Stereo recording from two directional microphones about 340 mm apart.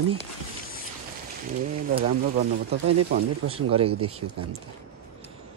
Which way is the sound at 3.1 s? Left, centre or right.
Right.